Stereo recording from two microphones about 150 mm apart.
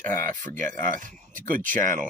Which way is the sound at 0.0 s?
15° left (ahead or behind).